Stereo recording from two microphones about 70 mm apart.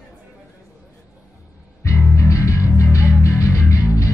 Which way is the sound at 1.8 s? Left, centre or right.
Left.